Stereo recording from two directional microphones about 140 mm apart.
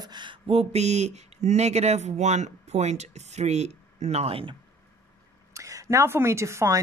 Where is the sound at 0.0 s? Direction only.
35° right (ahead or behind).